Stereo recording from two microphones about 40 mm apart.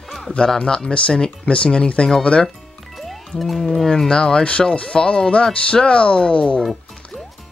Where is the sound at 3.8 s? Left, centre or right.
Centre.